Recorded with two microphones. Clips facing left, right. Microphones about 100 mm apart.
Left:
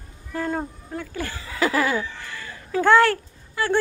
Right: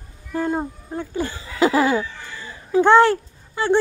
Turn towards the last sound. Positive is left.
turn(degrees=-25)  # may be behind; listen again after turning